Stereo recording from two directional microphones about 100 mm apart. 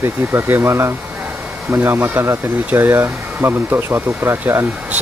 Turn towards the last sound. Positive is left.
turn(degrees=-20)  # may be behind; listen again after turning